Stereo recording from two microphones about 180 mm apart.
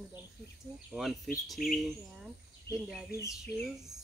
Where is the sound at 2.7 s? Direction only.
65° left (ahead or behind).